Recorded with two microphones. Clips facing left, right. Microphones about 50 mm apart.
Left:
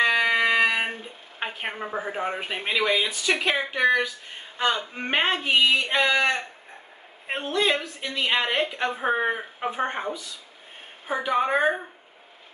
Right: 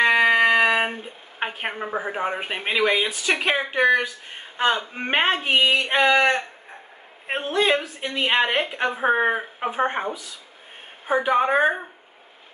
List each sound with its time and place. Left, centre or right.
0.0 s a sound: right
2.7 s speech: right
7.2 s speech: right